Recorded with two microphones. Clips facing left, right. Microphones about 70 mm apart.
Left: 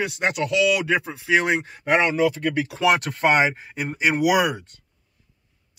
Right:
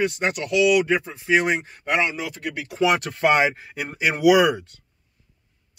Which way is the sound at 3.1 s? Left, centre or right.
Left.